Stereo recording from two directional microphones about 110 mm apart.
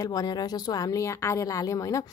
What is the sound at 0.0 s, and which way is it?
A woman's voice, 35° left (ahead or behind).